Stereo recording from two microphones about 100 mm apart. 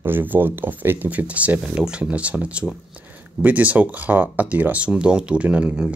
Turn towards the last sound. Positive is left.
turn(degrees=-10)  # may be behind; listen again after turning